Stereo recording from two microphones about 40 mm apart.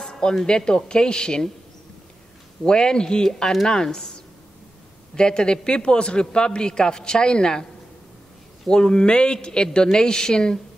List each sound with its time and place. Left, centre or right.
0.0 s music: centre
0.5 s a man's voice: centre
2.6 s a man's voice: centre
8.6 s a man's voice: left